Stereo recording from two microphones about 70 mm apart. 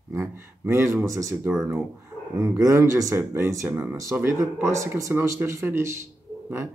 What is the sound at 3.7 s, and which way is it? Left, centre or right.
Speech, centre.